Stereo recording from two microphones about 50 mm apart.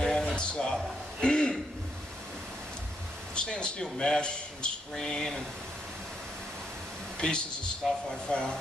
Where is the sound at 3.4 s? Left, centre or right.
Centre.